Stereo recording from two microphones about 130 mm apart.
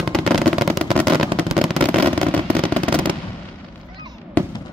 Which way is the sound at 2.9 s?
40° right (ahead or behind).